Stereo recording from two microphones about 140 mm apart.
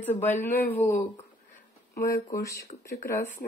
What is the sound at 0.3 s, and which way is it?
Speech, 15° left (ahead or behind).